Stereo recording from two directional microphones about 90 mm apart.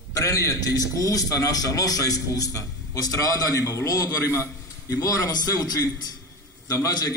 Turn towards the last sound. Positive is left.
turn(degrees=40)  # may be behind; listen again after turning